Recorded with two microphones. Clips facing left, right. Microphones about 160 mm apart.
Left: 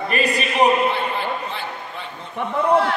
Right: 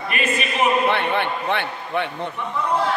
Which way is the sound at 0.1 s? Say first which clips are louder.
Left 2 dB; 35° left (ahead or behind).